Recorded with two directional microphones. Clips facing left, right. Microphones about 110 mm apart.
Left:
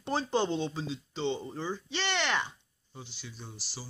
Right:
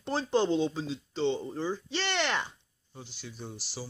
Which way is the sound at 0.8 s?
5° left (ahead or behind).